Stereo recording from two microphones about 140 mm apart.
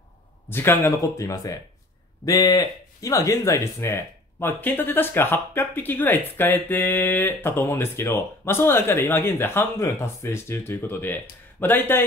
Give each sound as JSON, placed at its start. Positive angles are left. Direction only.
{"t": 0.5, "sound": "speech", "side_deg": 15}